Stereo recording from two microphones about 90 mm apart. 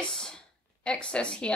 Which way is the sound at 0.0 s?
5° left (ahead or behind).